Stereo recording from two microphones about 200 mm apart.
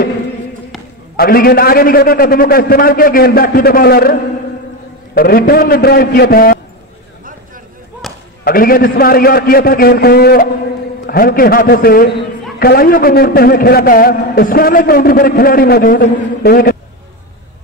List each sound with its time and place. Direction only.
1.1 s a man's voice: 50° left (ahead or behind)
8.0 s a sound: centre (ahead or behind)
8.5 s a man's voice: 45° left (ahead or behind)